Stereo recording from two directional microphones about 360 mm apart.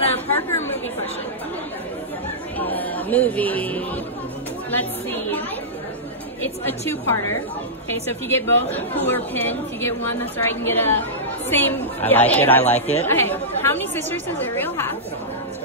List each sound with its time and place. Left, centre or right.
0.0 s chatter: centre
2.6 s a woman's voice: centre
8.1 s a woman's voice: centre
12.7 s speech: centre
13.0 s a woman's voice: centre